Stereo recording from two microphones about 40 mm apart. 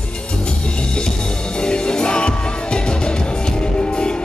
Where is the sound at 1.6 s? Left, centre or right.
Left.